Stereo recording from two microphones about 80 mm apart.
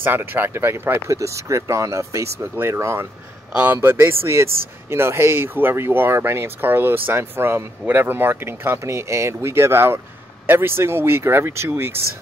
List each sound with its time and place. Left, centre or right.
0.0 s speech: right